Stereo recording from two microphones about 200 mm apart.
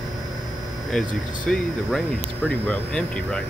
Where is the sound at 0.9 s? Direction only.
5° left (ahead or behind).